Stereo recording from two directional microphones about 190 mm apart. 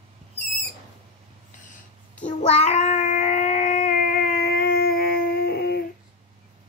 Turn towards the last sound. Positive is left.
turn(degrees=55)  # may be behind; listen again after turning